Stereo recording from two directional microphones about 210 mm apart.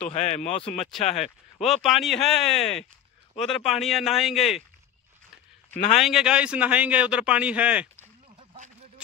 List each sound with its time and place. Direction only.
0.1 s speech: 35° left (ahead or behind)
1.6 s a man's voice: centre (ahead or behind)
5.9 s a man's voice: centre (ahead or behind)